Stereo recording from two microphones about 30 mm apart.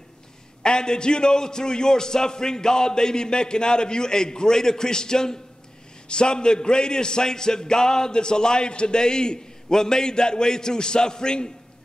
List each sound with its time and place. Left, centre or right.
0.6 s a man's voice: left